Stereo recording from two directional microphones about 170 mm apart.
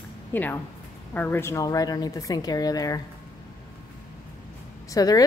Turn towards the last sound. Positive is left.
turn(degrees=20)  # may be behind; listen again after turning